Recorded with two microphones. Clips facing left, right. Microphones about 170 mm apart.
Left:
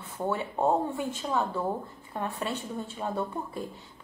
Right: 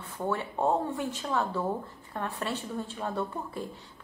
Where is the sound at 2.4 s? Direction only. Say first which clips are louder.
Even; centre (ahead or behind).